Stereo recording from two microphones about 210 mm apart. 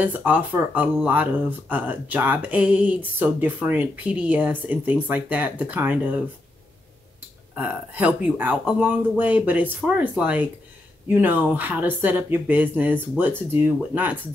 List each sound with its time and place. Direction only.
0.0 s speech: 10° right (ahead or behind)
7.5 s speech: 5° right (ahead or behind)